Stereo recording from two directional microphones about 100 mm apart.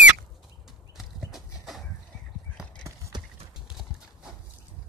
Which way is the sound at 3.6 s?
5° right (ahead or behind).